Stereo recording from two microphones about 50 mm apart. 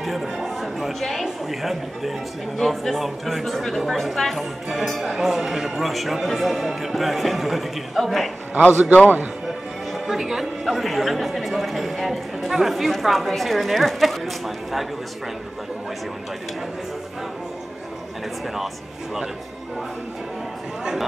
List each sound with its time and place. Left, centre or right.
0.0 s chatter: centre
1.2 s speech: centre
8.7 s a man's voice: right
9.9 s speech: centre